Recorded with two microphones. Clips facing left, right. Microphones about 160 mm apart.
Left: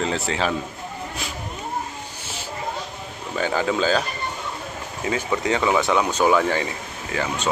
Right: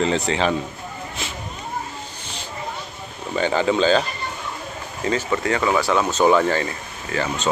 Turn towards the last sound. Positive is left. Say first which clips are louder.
# right 1 dB
turn(degrees=10)  # may be behind; listen again after turning